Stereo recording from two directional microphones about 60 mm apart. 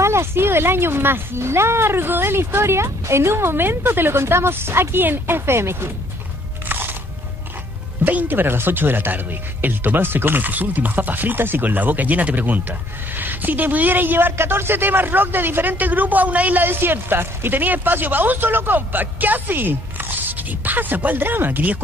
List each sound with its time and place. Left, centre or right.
0.0 s speech: right
6.7 s biting: right
8.0 s speech: right